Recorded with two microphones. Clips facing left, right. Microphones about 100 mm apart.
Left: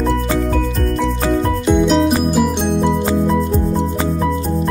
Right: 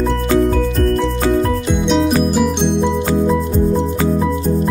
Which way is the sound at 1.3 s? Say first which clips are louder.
Left 1 dB; centre (ahead or behind).